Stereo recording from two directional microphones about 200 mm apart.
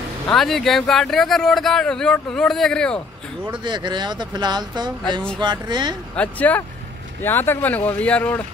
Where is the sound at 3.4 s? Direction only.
20° right (ahead or behind).